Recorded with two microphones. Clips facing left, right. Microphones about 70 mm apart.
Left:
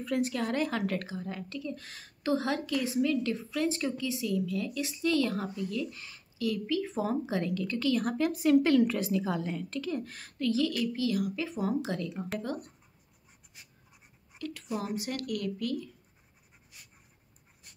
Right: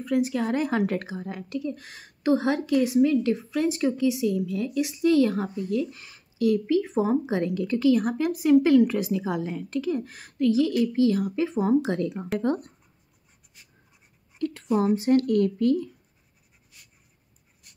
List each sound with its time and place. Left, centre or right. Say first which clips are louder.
0.0 s speech: right 6 dB; centre
0.3 s a woman's voice: right 5 dB; centre
10.8 s a woman's voice: right 8 dB; right
14.4 s speech: right 11 dB; right